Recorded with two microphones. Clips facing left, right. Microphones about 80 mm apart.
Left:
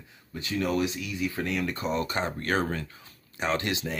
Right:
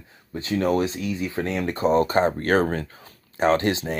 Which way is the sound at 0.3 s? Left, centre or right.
Right.